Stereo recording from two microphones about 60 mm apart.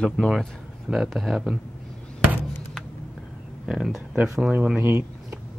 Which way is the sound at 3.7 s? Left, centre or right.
Centre.